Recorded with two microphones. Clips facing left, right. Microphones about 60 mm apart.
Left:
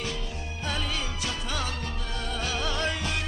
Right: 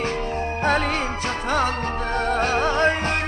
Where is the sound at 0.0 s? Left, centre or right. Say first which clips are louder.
Right 10 dB; right.